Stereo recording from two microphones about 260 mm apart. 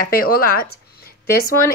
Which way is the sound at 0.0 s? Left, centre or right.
Left.